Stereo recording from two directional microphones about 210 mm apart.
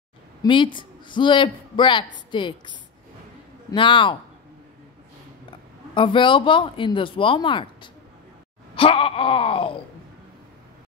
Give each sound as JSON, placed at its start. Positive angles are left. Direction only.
{"t": 0.4, "sound": "speech", "side_deg": 25}
{"t": 5.9, "sound": "speech", "side_deg": 25}